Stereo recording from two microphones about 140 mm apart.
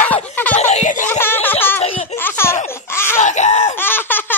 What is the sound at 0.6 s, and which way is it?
Screaming, 55° left (ahead or behind).